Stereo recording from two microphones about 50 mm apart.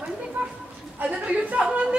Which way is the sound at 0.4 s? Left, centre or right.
Right.